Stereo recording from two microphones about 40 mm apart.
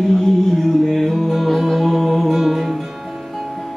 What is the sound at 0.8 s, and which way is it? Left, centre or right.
Music, centre.